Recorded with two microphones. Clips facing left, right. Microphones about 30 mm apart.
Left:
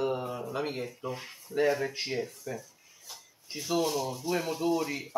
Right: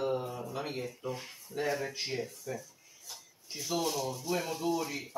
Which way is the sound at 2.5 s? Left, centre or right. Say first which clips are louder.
Left 1 dB; centre.